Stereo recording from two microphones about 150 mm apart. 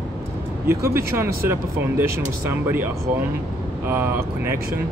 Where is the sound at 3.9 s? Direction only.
15° right (ahead or behind).